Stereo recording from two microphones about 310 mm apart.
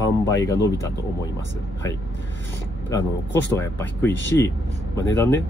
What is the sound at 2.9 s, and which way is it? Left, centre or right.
Speech, centre.